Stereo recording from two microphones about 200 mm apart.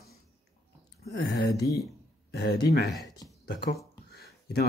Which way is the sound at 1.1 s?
55° left (ahead or behind).